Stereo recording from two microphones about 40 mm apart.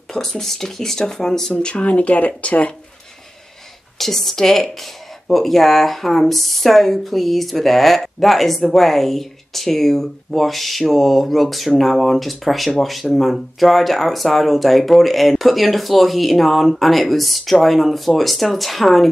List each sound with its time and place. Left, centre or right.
0.1 s speech: centre
1.5 s speech: left
4.0 s speech: centre